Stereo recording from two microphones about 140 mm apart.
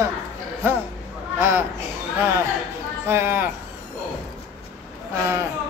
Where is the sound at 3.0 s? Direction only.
15° right (ahead or behind).